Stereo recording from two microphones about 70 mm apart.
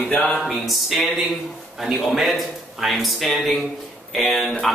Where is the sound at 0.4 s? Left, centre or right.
Centre.